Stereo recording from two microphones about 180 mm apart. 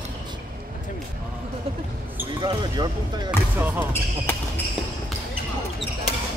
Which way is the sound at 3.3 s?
10° right (ahead or behind).